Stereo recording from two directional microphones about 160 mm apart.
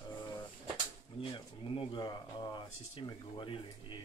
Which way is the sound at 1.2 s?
30° left (ahead or behind).